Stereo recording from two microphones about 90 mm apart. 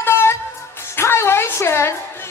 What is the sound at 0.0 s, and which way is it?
Music, 30° left (ahead or behind).